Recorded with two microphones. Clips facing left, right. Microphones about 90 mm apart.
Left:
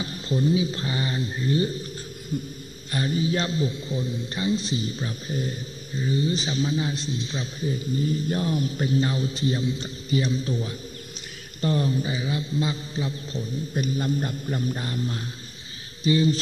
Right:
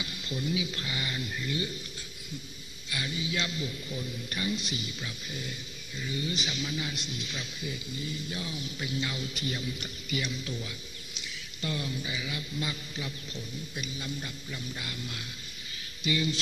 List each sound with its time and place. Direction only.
0.0 s a man's voice: 35° left (ahead or behind)